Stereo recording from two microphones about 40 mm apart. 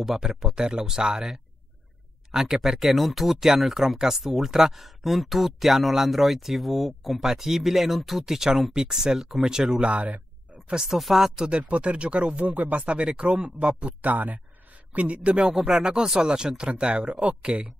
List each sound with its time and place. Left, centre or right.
0.0 s speech: centre
9.8 s speech: right
10.7 s speech: centre
11.5 s speech: right
12.8 s speech: right
14.0 s speech: right
15.6 s speech: right